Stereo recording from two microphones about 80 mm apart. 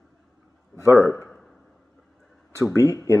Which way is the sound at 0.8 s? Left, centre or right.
Left.